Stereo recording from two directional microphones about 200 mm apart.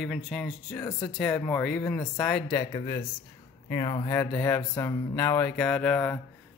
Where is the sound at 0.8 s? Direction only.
15° left (ahead or behind).